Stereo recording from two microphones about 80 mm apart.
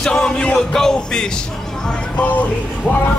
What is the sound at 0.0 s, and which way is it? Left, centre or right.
Music, centre.